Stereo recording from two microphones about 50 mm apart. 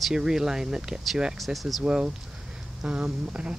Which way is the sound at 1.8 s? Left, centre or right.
Right.